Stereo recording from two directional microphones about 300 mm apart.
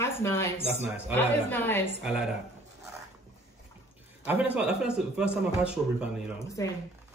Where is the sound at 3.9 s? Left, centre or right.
Centre.